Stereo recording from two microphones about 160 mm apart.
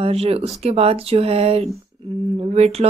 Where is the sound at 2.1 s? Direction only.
25° right (ahead or behind).